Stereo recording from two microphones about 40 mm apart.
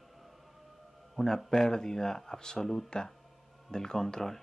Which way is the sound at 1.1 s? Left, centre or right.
Centre.